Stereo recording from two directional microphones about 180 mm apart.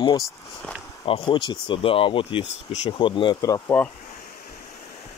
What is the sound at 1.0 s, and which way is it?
Speech, 30° left (ahead or behind).